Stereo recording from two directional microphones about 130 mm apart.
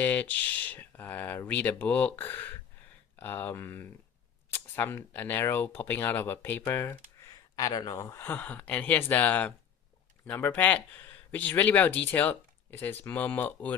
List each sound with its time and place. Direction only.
0.0 s speech: 15° left (ahead or behind)